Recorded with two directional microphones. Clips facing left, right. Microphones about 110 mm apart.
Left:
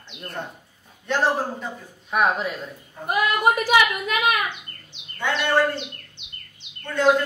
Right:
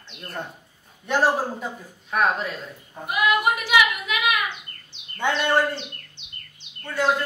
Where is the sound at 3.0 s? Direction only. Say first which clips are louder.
Left 1 dB; 40° left (ahead or behind).